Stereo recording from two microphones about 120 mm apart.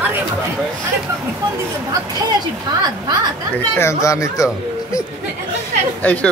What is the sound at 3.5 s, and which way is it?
Speech, 20° left (ahead or behind).